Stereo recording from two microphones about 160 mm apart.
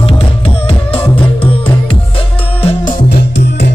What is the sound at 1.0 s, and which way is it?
Music, 30° left (ahead or behind).